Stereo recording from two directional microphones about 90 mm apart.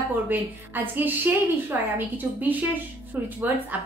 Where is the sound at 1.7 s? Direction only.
25° right (ahead or behind).